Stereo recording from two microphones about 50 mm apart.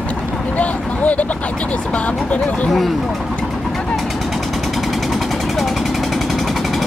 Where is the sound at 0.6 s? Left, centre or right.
Left.